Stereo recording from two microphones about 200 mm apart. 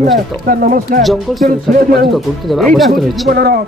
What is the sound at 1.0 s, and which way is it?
Speech, centre (ahead or behind).